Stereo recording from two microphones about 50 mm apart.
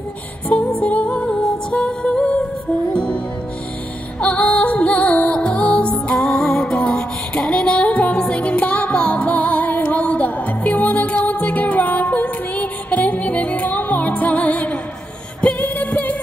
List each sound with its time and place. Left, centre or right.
0.7 s music: left
4.2 s music: left